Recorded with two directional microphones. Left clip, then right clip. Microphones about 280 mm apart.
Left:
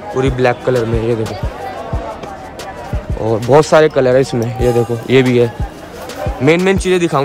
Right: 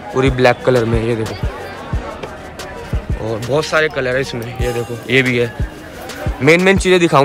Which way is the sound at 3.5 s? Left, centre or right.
Left.